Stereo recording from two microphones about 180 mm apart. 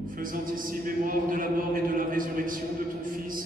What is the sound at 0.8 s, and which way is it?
A man's voice, 50° right (ahead or behind).